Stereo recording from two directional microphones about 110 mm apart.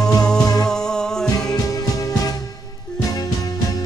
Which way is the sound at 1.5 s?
30° left (ahead or behind).